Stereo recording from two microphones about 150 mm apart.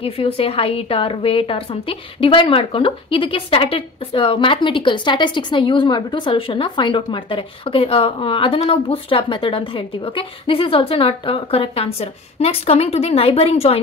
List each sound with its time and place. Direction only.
0.0 s a woman's voice: 40° left (ahead or behind)